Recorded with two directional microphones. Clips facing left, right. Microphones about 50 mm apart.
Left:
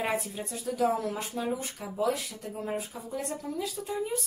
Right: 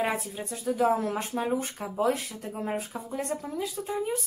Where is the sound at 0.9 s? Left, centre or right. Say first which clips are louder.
Right 3 dB; right.